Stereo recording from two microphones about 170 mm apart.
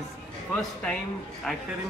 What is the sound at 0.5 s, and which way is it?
A woman's voice, 5° left (ahead or behind).